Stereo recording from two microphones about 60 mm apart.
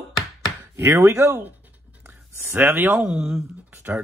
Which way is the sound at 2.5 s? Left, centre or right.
Right.